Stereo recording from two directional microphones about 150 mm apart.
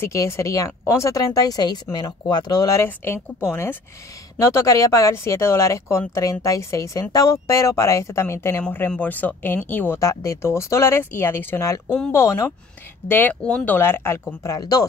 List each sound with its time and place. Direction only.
0.0 s speech: 20° left (ahead or behind)